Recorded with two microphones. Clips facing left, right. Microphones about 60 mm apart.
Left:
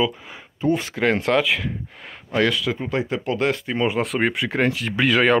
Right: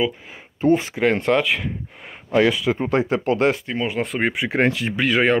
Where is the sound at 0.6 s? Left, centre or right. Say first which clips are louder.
Right 4 dB; right.